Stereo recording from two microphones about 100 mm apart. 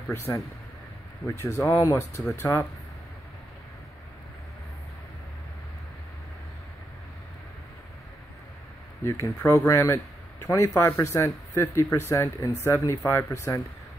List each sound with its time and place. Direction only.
0.3 s speech: 30° left (ahead or behind)
9.2 s speech: 25° left (ahead or behind)